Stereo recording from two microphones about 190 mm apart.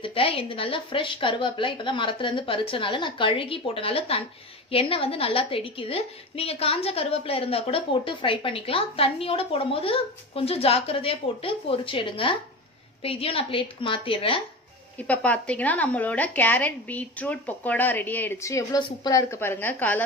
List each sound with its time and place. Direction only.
0.0 s a woman's voice: 30° left (ahead or behind)
15.0 s a woman's voice: 5° left (ahead or behind)